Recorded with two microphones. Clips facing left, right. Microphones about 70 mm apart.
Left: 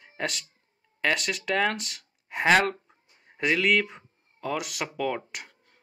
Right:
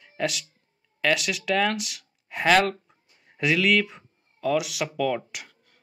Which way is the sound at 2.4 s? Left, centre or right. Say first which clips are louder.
Right 1 dB; centre.